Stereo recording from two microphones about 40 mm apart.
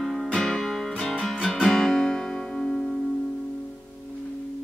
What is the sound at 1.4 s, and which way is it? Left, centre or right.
Guitar, centre.